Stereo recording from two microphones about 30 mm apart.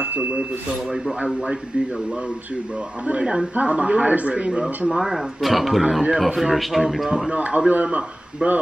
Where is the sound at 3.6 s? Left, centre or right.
Right.